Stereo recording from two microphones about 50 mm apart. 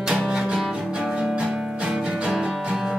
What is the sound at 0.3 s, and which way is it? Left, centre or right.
Music, centre.